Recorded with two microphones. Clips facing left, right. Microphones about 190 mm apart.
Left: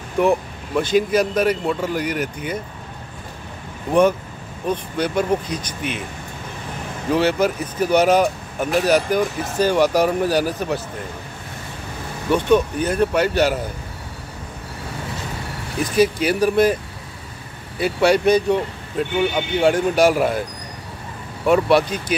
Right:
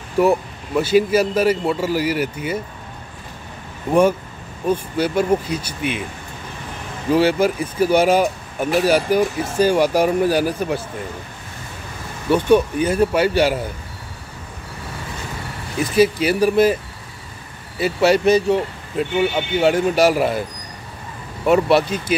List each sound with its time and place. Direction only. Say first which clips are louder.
0.2 s speech: right 1 dB; 5° right (ahead or behind)
4.6 s speech: right 3 dB; 5° right (ahead or behind)
7.2 s speech: right 2 dB; 10° right (ahead or behind)
12.3 s speech: right 2 dB; 10° right (ahead or behind)
15.8 s speech: right 2 dB; 5° right (ahead or behind)
17.7 s speech: right 1 dB; 5° right (ahead or behind)
21.5 s speech: right 1 dB; 5° right (ahead or behind)